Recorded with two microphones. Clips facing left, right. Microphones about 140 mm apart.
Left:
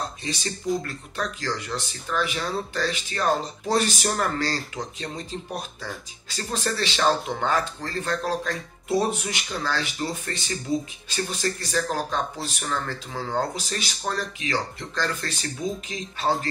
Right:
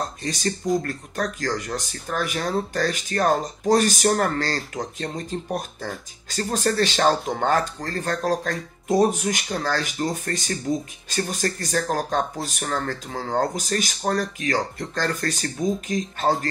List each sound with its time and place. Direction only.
0.2 s speech: 45° right (ahead or behind)